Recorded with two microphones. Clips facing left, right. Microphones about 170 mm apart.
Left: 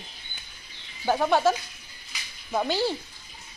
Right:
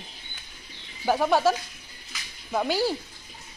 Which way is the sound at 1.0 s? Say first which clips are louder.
Even; 5° right (ahead or behind).